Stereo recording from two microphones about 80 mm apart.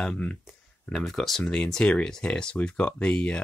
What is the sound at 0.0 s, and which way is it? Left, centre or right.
Speech, centre.